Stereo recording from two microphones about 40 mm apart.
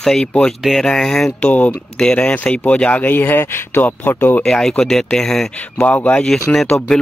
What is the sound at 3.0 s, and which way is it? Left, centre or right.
Speech, left.